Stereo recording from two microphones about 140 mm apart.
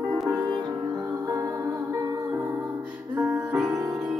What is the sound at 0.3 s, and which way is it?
Music, 30° right (ahead or behind).